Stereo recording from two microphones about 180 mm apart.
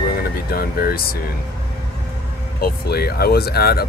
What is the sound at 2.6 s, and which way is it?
Speech, 60° left (ahead or behind).